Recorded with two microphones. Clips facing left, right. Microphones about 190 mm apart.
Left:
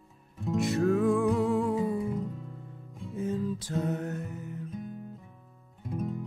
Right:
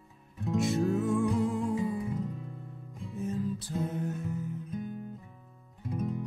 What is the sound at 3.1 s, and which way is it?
Music, 90° left.